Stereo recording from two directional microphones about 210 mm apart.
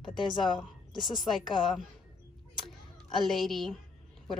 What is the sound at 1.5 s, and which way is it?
Speech, centre (ahead or behind).